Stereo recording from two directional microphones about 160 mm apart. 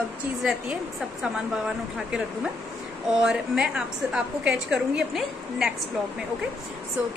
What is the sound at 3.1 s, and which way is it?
A woman's voice, 5° right (ahead or behind).